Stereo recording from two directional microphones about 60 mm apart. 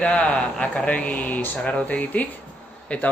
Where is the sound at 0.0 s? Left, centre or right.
Centre.